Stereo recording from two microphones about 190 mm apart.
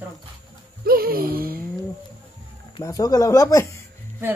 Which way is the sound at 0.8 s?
50° right (ahead or behind).